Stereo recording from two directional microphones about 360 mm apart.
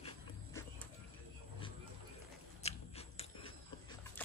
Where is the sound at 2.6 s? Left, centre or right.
Centre.